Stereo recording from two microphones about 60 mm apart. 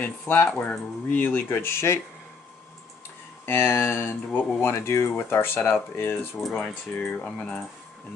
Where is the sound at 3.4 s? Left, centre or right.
Left.